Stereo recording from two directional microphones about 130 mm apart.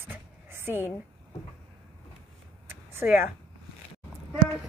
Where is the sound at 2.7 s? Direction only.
15° right (ahead or behind).